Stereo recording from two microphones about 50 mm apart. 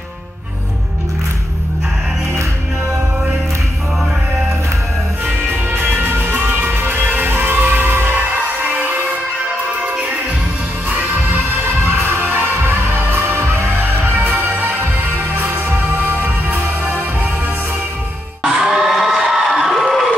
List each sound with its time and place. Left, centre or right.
5.2 s music: right
11.6 s music: right
18.4 s crowd: centre